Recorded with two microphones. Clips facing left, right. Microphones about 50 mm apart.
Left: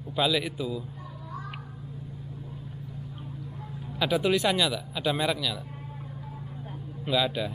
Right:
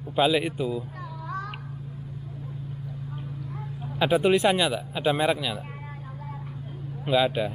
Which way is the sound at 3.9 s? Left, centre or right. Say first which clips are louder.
Right 4 dB; right.